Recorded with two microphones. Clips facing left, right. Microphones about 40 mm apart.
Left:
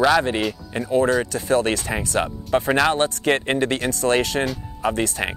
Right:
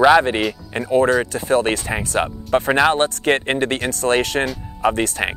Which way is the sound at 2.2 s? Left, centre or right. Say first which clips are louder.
Right 3 dB; centre.